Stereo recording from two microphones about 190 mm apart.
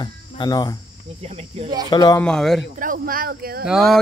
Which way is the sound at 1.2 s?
35° right (ahead or behind).